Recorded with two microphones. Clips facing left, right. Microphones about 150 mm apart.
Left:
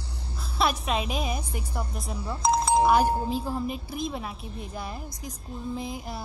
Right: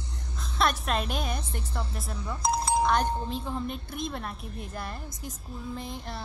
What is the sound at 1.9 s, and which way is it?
A woman's voice, centre (ahead or behind).